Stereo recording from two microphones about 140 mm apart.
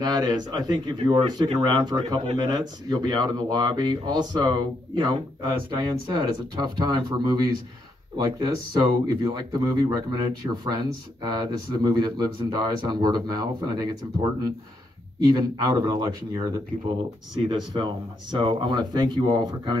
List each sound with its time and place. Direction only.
0.0 s speech: 30° right (ahead or behind)
15.1 s speech: 30° right (ahead or behind)